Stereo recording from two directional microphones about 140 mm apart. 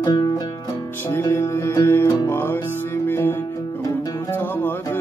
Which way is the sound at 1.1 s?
20° left (ahead or behind).